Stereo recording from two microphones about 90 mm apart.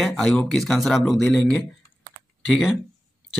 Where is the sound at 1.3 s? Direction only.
15° left (ahead or behind).